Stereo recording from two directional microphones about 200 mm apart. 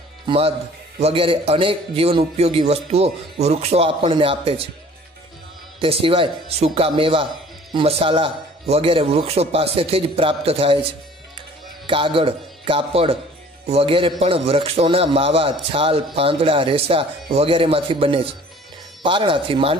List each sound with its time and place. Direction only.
0.3 s a man's voice: 30° right (ahead or behind)
5.8 s a man's voice: 30° right (ahead or behind)
11.3 s music: 25° right (ahead or behind)
13.7 s a man's voice: 30° right (ahead or behind)